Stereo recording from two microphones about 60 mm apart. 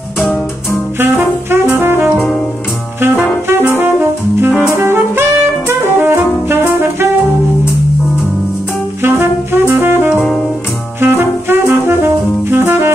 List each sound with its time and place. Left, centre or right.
0.9 s brass instrument: right
3.6 s brass instrument: right
5.9 s music: right
9.0 s music: right
9.8 s jazz: right
11.0 s music: right